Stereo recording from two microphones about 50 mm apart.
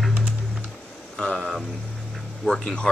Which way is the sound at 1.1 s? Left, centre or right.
Centre.